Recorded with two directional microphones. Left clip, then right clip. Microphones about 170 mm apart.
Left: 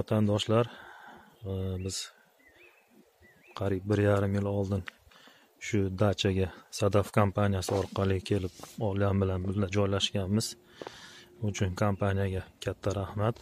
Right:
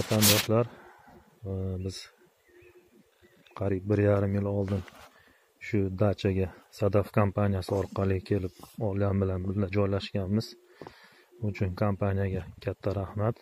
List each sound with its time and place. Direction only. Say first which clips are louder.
0.1 s speech: right 3 dB; 25° left (ahead or behind)
3.5 s speech: right 1 dB; 15° left (ahead or behind)